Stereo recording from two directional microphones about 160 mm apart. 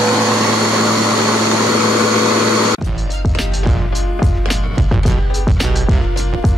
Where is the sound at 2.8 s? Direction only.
Centre (ahead or behind).